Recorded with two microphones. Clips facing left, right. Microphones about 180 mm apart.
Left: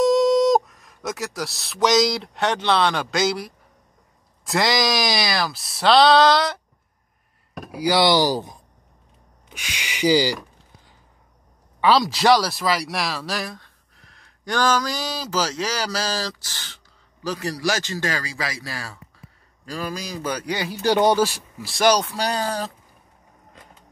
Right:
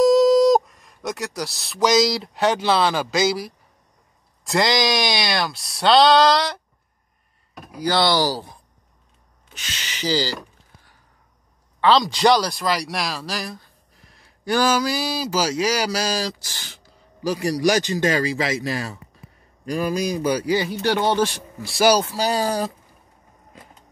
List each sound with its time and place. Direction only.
0.0 s speech: centre (ahead or behind)
7.7 s speech: 10° left (ahead or behind)
11.8 s speech: 5° left (ahead or behind)
20.8 s speech: 15° left (ahead or behind)
21.7 s speech: 5° right (ahead or behind)
23.5 s a sound: 10° right (ahead or behind)